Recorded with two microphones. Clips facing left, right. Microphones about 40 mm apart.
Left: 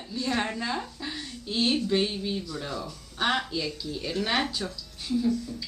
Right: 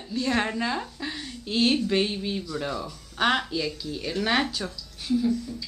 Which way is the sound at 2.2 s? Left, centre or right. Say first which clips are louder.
Right 2 dB; right.